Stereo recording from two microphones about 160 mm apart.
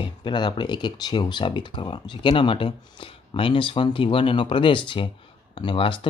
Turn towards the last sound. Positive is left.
turn(degrees=30)  # may be behind; listen again after turning